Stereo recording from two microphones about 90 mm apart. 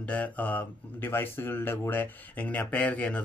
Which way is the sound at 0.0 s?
15° left (ahead or behind).